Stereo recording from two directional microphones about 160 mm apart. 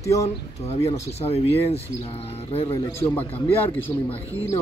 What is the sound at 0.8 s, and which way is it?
Speech, 40° left (ahead or behind).